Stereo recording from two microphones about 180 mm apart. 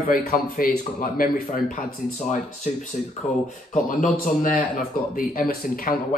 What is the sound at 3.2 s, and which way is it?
Speech, 40° left (ahead or behind).